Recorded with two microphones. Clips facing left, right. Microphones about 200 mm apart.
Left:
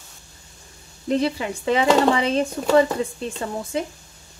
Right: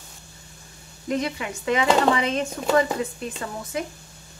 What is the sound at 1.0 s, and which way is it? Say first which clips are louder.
Speech: left 4 dB; 30° left (ahead or behind).